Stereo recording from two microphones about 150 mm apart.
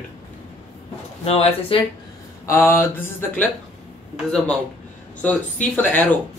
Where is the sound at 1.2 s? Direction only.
40° left (ahead or behind).